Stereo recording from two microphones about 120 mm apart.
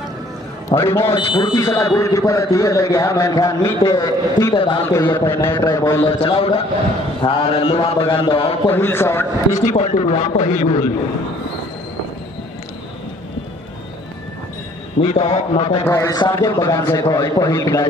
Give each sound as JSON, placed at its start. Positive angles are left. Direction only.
{"t": 0.7, "sound": "a man's voice", "side_deg": 20}
{"t": 1.1, "sound": "speech", "side_deg": 40}
{"t": 1.6, "sound": "a man's voice", "side_deg": 25}
{"t": 6.0, "sound": "a man's voice", "side_deg": 50}
{"t": 7.2, "sound": "mantra", "side_deg": 55}
{"t": 8.6, "sound": "a man's voice", "side_deg": 20}
{"t": 9.6, "sound": "a man's voice", "side_deg": 90}
{"t": 15.0, "sound": "mantra", "side_deg": 55}
{"t": 15.9, "sound": "a man's voice", "side_deg": 25}